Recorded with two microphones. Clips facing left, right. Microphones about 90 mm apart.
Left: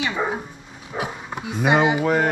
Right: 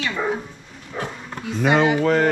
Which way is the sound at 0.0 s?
15° left (ahead or behind).